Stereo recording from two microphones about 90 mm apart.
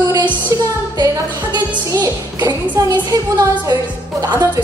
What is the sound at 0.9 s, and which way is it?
Music, 55° right (ahead or behind).